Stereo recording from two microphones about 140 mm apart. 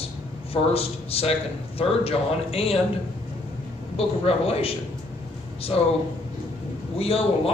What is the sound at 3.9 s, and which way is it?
Speech, 45° left (ahead or behind).